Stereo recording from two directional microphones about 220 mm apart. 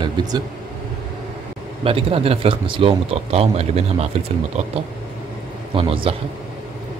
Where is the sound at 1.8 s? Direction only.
25° right (ahead or behind).